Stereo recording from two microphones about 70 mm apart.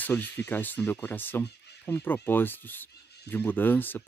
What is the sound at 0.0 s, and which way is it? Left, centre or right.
Speech, left.